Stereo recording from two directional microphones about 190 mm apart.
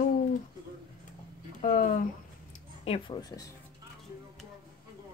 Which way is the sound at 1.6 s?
45° left (ahead or behind).